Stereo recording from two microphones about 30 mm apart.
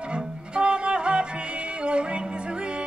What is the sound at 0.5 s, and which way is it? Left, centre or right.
Music, right.